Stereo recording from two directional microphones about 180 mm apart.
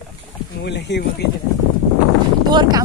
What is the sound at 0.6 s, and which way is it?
Speech, 75° left (ahead or behind).